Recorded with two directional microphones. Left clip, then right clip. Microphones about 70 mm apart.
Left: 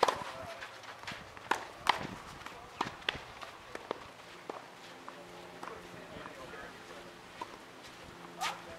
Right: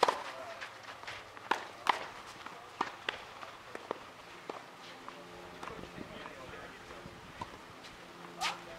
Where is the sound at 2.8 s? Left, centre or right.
Left.